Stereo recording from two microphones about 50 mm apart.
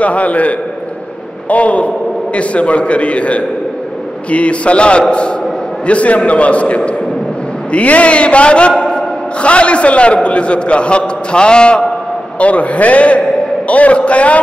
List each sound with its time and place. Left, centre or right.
0.0 s a man's voice: left